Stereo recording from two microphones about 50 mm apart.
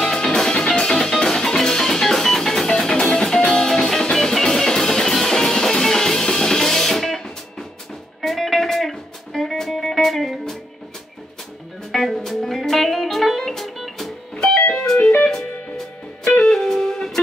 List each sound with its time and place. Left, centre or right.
0.0 s music: centre
11.9 s music: centre
14.3 s music: centre